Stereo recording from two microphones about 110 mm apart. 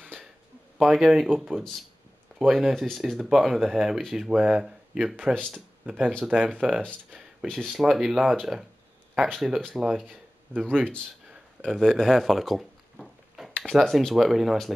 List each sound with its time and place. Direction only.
0.0 s a sound: 10° right (ahead or behind)
0.7 s speech: 5° right (ahead or behind)
7.4 s speech: centre (ahead or behind)
10.5 s speech: 15° right (ahead or behind)
11.6 s speech: centre (ahead or behind)